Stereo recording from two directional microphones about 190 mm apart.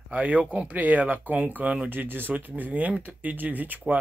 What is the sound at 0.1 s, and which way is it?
Speech, 10° right (ahead or behind).